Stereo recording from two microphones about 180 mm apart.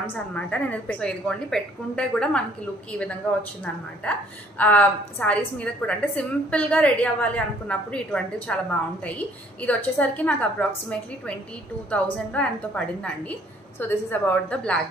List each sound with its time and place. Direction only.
0.0 s a woman's voice: 10° left (ahead or behind)
4.0 s a woman's voice: 5° left (ahead or behind)